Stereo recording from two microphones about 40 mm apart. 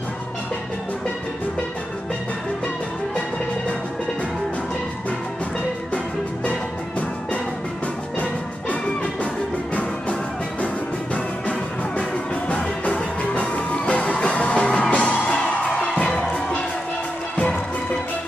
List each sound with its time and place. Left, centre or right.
8.2 s music: left
12.0 s music: left
15.3 s music: left